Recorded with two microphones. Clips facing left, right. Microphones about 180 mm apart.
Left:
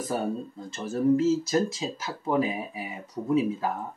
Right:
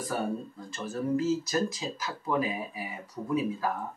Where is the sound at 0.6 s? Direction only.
25° left (ahead or behind).